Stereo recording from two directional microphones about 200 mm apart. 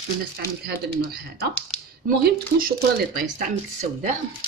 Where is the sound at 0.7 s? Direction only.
50° right (ahead or behind).